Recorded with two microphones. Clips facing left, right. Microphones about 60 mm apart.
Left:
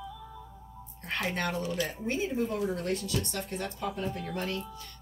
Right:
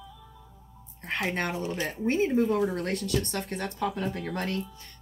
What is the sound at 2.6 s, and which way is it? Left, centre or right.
Speech, right.